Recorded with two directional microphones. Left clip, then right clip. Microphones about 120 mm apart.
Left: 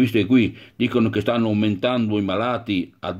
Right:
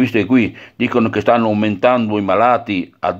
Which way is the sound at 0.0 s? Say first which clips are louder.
Right 4 dB; 20° left (ahead or behind).